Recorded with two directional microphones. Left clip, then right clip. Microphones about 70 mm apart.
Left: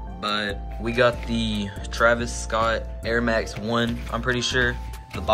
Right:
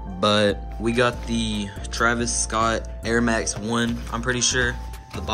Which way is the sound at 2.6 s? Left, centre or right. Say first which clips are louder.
Right 1 dB; right.